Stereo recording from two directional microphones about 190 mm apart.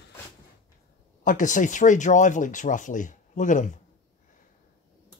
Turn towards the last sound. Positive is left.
turn(degrees=40)  # may be behind; listen again after turning